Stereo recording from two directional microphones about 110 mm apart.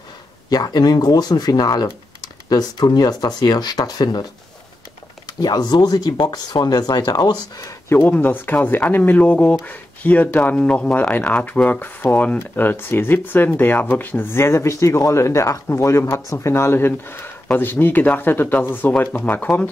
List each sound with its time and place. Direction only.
0.5 s speech: 35° left (ahead or behind)
5.4 s speech: 40° left (ahead or behind)
8.0 s speech: 15° left (ahead or behind)